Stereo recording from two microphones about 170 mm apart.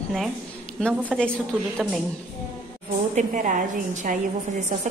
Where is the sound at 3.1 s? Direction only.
50° right (ahead or behind).